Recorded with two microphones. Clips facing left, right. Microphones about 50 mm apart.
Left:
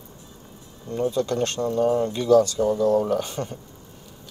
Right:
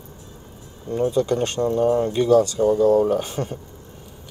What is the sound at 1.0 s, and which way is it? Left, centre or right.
Speech, centre.